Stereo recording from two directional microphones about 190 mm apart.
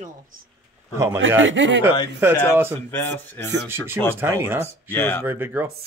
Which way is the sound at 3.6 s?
10° right (ahead or behind).